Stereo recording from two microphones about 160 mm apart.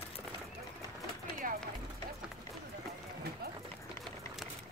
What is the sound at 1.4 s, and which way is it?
Run, 60° right (ahead or behind).